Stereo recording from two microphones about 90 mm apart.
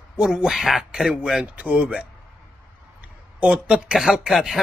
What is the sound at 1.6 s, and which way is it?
Speech, 15° right (ahead or behind).